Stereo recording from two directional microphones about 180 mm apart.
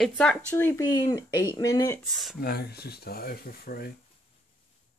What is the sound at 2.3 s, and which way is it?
Speech, 55° left (ahead or behind).